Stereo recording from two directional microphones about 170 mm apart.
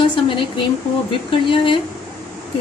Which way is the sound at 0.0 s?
30° left (ahead or behind).